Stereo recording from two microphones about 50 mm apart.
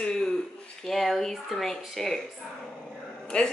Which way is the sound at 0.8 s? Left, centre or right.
Centre.